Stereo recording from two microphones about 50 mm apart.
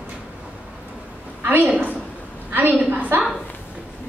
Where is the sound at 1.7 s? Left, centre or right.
Right.